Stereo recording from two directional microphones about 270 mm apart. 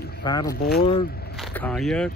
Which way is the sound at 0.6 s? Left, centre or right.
Left.